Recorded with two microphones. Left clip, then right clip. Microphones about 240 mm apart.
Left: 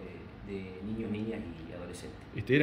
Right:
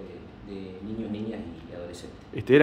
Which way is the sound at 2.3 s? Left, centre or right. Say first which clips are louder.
Right 9 dB; centre.